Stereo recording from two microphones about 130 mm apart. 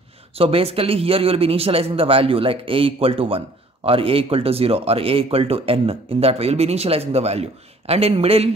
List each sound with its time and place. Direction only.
0.4 s a man's voice: 45° right (ahead or behind)